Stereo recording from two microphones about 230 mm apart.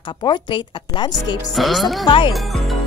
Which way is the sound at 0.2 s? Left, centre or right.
Centre.